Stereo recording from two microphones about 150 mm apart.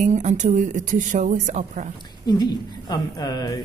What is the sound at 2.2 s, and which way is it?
A woman's voice, 25° left (ahead or behind).